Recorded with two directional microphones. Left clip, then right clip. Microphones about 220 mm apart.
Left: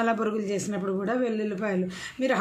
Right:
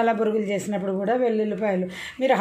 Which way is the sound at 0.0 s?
15° left (ahead or behind).